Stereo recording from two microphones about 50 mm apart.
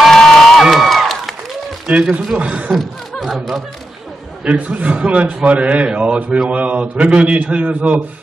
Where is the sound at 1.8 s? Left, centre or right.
Right.